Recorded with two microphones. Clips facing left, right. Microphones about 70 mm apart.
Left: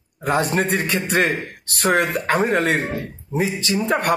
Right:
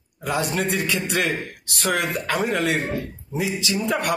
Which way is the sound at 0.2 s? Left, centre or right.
Left.